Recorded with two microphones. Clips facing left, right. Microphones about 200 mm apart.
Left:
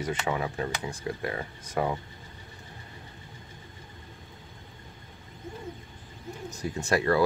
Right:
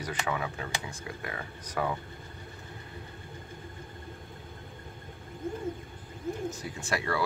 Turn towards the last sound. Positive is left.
turn(degrees=40)  # may be behind; listen again after turning